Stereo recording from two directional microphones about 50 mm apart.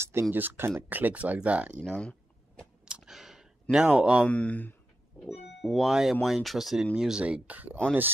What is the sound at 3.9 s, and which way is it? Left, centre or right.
Speech, right.